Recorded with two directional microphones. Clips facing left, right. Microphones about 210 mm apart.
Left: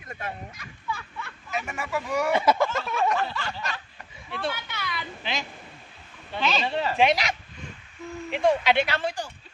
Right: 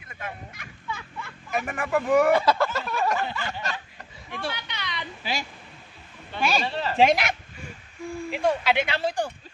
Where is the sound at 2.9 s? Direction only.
Centre (ahead or behind).